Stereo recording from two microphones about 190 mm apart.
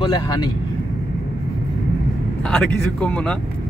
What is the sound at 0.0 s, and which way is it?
Speech, 20° left (ahead or behind).